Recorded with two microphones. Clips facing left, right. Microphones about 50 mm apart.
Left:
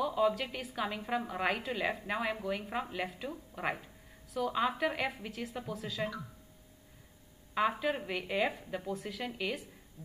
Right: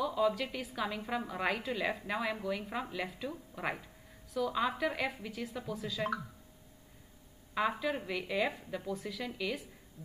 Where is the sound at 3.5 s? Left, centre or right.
Centre.